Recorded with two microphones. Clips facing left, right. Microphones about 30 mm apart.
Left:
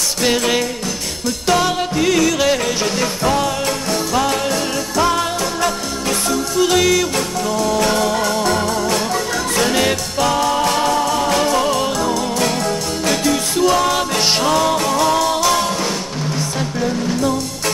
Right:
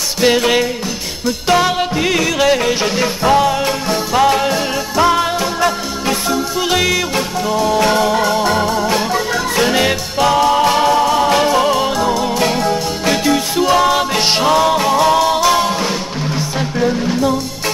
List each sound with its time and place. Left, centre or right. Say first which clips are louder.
0.2 s music: right 5 dB; centre